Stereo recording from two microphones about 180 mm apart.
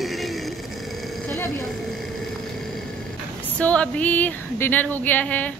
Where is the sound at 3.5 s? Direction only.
5° left (ahead or behind).